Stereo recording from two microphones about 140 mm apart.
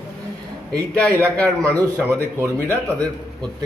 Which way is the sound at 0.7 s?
20° right (ahead or behind).